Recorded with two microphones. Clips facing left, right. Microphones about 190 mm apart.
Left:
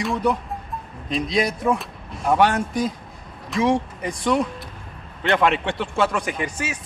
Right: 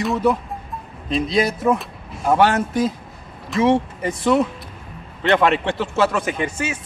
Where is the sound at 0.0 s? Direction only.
5° right (ahead or behind).